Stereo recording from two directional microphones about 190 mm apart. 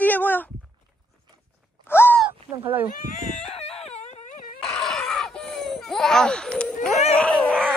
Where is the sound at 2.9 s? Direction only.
40° left (ahead or behind).